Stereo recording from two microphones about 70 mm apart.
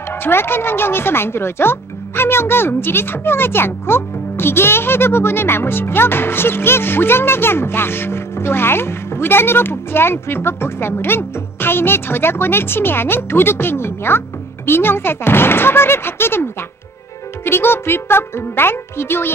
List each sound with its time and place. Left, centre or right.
0.2 s speech: left
17.5 s speech: left